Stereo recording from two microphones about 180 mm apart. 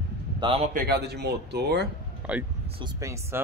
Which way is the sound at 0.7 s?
60° right (ahead or behind).